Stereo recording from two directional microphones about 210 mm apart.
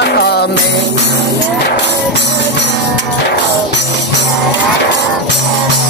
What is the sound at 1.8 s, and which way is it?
Music, 55° left (ahead or behind).